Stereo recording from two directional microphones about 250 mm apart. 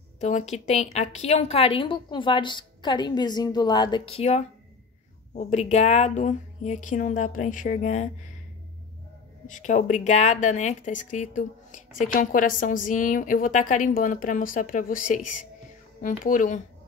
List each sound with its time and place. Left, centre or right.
0.2 s a woman's voice: left
9.5 s speech: left